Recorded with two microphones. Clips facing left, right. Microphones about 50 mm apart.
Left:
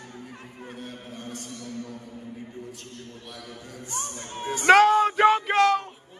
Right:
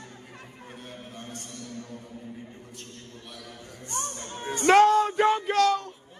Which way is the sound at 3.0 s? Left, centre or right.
Left.